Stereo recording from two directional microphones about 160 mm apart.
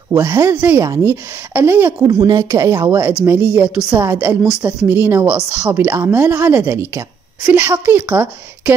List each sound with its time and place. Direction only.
0.1 s a woman's voice: 20° right (ahead or behind)
4.4 s speech: 5° right (ahead or behind)
4.8 s speech: 15° right (ahead or behind)